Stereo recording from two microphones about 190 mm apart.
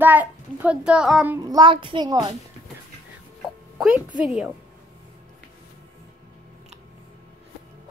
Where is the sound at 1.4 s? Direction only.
20° right (ahead or behind).